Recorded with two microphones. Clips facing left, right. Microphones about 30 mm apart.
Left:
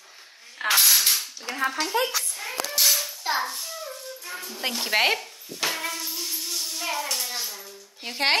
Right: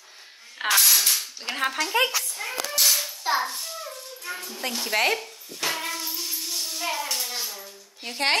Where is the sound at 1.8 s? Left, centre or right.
Right.